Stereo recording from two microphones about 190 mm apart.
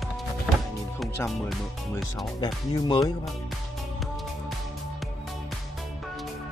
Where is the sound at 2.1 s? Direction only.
20° left (ahead or behind).